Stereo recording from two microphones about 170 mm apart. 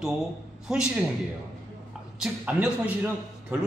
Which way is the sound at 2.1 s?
5° right (ahead or behind).